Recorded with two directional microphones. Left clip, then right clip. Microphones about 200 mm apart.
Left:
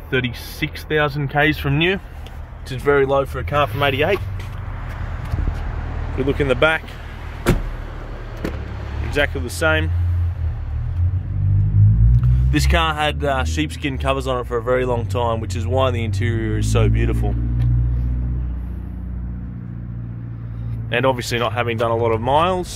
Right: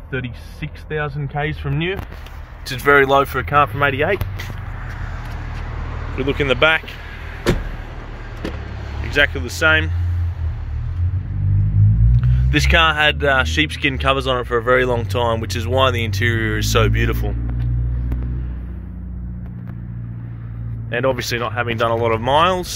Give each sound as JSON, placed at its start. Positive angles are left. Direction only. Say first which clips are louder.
{"t": 0.1, "sound": "speech", "louder": "left 6 dB", "side_deg": 50}
{"t": 2.7, "sound": "speech", "louder": "right 4 dB", "side_deg": 5}
{"t": 6.1, "sound": "speech", "louder": "right 1 dB", "side_deg": 15}
{"t": 9.1, "sound": "speech", "louder": "right 4 dB", "side_deg": 10}
{"t": 12.2, "sound": "speech", "louder": "right 4 dB", "side_deg": -5}
{"t": 20.9, "sound": "speech", "louder": "left 1 dB", "side_deg": 15}